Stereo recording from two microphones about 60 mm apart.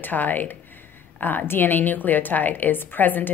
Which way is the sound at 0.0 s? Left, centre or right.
Left.